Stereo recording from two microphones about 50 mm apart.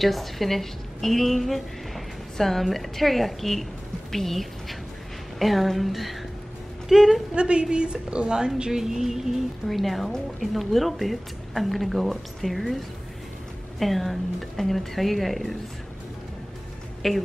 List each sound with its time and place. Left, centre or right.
0.0 s a woman's voice: centre
7.3 s a woman's voice: centre
17.0 s speech: centre